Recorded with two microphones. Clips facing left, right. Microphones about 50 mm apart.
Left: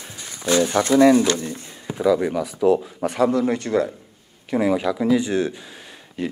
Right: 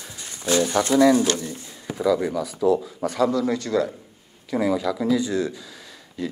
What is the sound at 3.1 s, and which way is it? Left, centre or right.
Speech, left.